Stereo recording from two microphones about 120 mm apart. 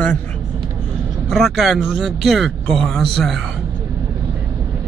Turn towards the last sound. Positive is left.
turn(degrees=0)  # may be behind; listen again after turning